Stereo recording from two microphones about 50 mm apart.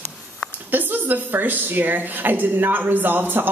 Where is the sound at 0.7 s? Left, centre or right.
Right.